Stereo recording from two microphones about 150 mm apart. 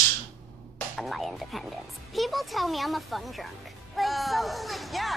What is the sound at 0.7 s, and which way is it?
A child's voice, centre (ahead or behind).